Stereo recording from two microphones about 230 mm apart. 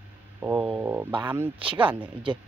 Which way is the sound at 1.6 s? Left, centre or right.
Right.